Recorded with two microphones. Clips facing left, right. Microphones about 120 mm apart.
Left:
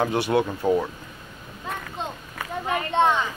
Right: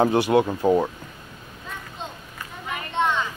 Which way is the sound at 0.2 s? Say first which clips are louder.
Right 3 dB; 20° right (ahead or behind).